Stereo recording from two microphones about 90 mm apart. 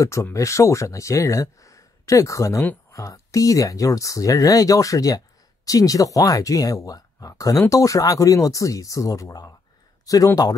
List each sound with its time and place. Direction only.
0.0 s speech: 35° left (ahead or behind)